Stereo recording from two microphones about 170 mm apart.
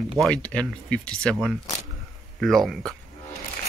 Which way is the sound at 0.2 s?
5° left (ahead or behind).